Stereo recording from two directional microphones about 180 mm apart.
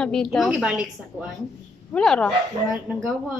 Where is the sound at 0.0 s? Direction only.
5° left (ahead or behind).